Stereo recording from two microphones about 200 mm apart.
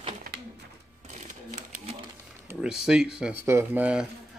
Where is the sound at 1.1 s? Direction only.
35° right (ahead or behind).